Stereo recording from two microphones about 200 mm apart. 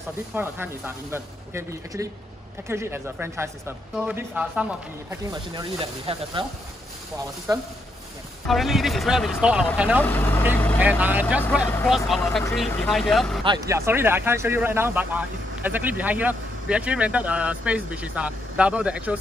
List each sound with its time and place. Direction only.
0.3 s speech: 10° right (ahead or behind)
5.3 s speech: 20° right (ahead or behind)
7.5 s speech: 20° right (ahead or behind)
8.5 s speech: centre (ahead or behind)
10.0 s speech: 10° left (ahead or behind)
10.8 s speech: 10° right (ahead or behind)
12.2 s speech: 10° left (ahead or behind)
13.4 s speech: 20° right (ahead or behind)